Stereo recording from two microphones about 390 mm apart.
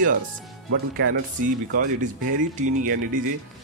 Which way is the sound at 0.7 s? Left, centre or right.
Right.